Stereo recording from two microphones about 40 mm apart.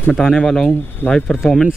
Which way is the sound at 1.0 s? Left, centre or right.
Left.